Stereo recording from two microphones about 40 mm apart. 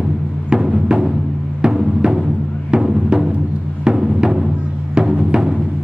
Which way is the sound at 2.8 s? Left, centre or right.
Centre.